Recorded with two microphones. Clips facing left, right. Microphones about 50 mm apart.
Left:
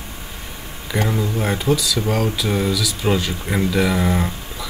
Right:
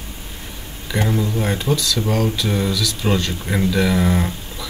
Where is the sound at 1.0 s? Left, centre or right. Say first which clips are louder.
Right 1 dB; centre.